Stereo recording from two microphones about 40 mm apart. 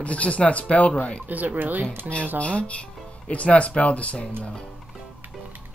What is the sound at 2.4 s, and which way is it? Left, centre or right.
Speech, left.